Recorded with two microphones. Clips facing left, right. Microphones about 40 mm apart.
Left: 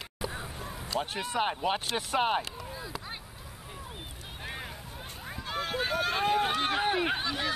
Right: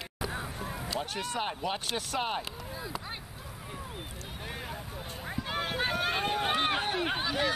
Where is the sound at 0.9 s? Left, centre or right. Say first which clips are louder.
Left 4 dB; centre.